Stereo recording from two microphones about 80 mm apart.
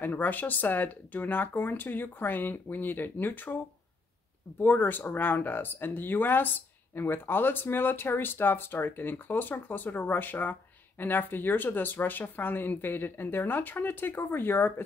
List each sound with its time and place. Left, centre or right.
0.0 s speech: left
4.6 s speech: left